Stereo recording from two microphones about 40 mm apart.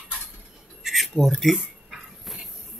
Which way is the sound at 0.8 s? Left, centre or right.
Centre.